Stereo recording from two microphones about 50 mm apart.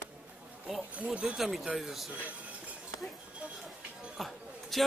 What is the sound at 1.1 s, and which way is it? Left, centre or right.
Speech, centre.